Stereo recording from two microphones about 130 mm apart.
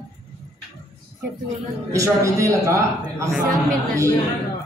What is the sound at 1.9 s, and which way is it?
A man's voice, 25° right (ahead or behind).